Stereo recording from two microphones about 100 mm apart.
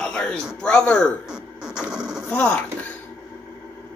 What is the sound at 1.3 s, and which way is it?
Music, 10° right (ahead or behind).